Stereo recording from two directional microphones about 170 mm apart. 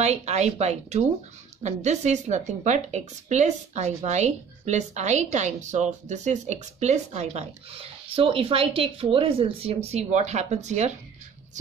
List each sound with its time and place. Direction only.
0.0 s a woman's voice: 40° right (ahead or behind)